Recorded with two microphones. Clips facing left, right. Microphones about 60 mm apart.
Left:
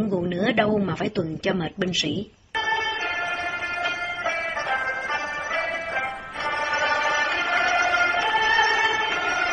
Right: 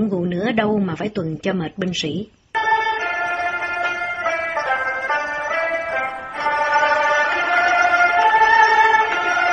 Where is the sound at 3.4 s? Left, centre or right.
Right.